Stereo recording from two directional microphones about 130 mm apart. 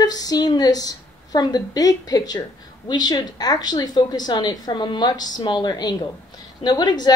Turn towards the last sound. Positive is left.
turn(degrees=35)  # may be behind; listen again after turning